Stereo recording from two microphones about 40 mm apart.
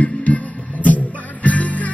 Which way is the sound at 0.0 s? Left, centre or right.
Left.